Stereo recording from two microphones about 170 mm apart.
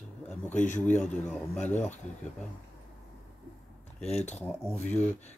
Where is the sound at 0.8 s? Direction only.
5° left (ahead or behind).